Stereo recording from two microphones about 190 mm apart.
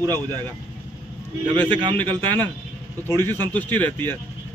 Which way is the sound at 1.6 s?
25° right (ahead or behind).